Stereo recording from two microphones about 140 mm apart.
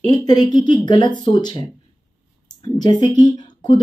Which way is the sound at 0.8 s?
30° left (ahead or behind).